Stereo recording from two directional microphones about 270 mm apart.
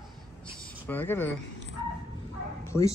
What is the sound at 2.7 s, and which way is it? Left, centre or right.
Speech, centre.